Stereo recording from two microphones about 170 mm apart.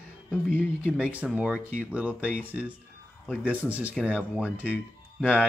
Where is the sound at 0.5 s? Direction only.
10° left (ahead or behind).